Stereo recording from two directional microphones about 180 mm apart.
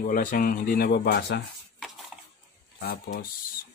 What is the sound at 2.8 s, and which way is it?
Speech, 55° left (ahead or behind).